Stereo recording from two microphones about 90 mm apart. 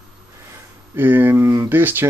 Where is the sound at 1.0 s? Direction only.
20° right (ahead or behind).